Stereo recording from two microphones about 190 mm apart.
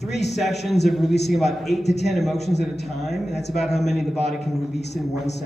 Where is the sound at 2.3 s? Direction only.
60° left (ahead or behind).